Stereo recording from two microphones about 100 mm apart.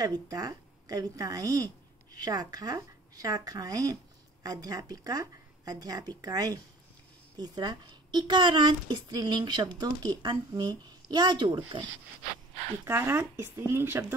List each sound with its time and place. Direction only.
0.0 s a woman's voice: 40° right (ahead or behind)
12.8 s speech: 25° right (ahead or behind)